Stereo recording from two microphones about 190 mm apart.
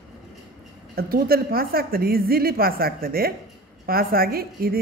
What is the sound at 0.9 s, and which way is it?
Speech, 50° right (ahead or behind).